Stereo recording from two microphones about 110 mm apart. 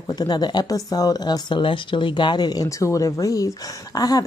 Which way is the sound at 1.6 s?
50° left (ahead or behind).